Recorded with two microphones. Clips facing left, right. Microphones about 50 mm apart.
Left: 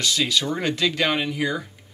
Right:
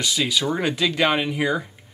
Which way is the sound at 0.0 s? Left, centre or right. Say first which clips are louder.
Even; centre.